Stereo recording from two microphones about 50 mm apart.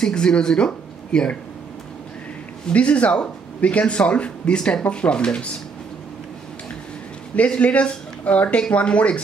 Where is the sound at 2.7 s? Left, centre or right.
Left.